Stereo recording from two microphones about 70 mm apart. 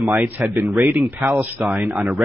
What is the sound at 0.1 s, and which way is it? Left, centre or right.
A man's voice, right.